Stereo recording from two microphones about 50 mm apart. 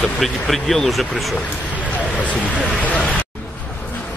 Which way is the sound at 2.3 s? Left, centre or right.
Left.